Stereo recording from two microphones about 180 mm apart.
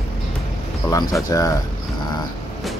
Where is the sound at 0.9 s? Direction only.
20° left (ahead or behind).